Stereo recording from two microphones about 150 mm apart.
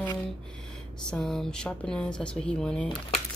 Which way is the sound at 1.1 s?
5° left (ahead or behind).